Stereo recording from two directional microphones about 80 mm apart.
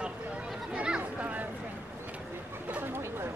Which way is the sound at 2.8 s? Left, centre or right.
Right.